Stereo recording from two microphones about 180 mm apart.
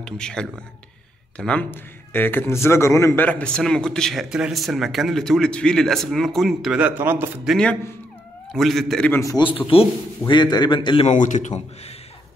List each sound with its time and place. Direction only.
0.0 s a man's voice: 5° left (ahead or behind); by 7.5 s 10° right (ahead or behind)
8.5 s a man's voice: centre (ahead or behind)
9.2 s a man's voice: 25° left (ahead or behind)
11.1 s speech: 40° left (ahead or behind)